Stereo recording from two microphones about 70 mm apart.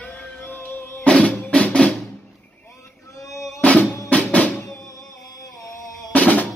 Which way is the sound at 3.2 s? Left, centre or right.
Left.